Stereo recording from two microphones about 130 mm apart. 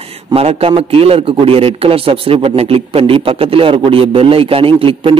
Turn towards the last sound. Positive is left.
turn(degrees=-45)  # may be behind; listen again after turning